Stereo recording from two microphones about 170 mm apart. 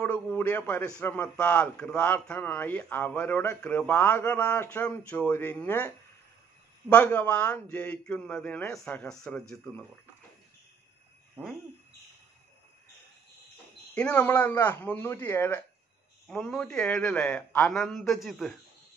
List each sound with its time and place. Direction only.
0.0 s a man's voice: 10° left (ahead or behind)
13.9 s a man's voice: 10° left (ahead or behind)